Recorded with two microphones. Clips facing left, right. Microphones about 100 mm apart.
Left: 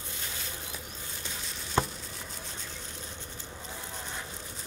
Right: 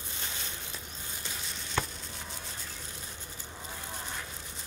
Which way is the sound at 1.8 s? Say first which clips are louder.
Left 5 dB; 30° left (ahead or behind).